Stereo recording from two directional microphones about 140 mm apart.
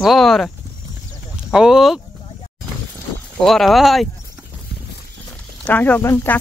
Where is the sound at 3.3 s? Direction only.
Centre (ahead or behind).